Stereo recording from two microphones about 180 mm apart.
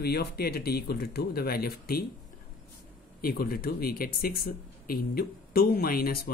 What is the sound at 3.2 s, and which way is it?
Speech, 55° left (ahead or behind).